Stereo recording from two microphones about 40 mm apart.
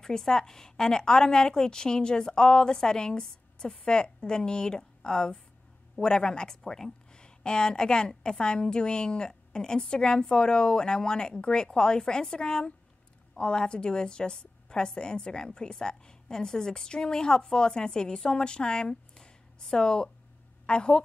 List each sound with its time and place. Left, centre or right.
0.0 s a woman's voice: centre